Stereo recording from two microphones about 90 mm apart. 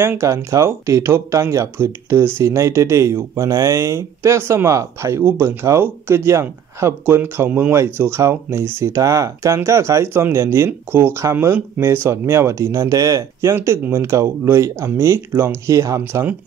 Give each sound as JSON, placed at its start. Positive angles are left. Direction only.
{"t": 0.0, "sound": "speech", "side_deg": -30}
{"t": 15.6, "sound": "speech", "side_deg": -35}
{"t": 16.0, "sound": "speech", "side_deg": -25}